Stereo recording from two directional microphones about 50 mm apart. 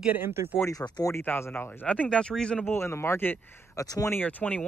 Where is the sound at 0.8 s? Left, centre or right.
Left.